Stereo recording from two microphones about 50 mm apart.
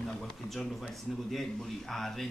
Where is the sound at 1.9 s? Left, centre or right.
Centre.